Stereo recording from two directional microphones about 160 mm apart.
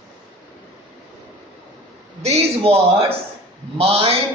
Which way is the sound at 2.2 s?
40° right (ahead or behind).